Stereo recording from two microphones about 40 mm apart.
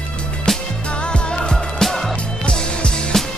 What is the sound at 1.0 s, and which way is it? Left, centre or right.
Music, left.